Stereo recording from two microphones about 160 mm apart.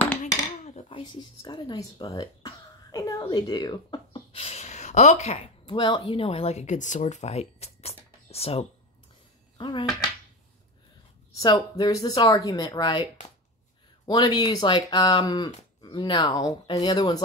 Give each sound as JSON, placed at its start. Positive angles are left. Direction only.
{"t": 0.2, "sound": "cutlery", "side_deg": 45}
{"t": 1.4, "sound": "speech", "side_deg": 25}
{"t": 9.6, "sound": "speech", "side_deg": 25}
{"t": 11.3, "sound": "speech", "side_deg": 25}